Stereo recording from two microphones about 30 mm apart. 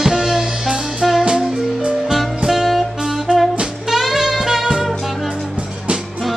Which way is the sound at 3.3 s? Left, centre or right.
Right.